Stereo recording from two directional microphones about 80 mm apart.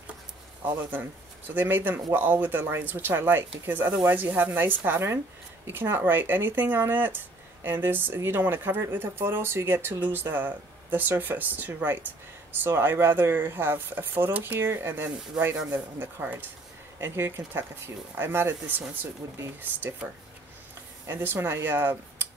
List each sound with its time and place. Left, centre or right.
1.5 s speech: right
21.1 s speech: right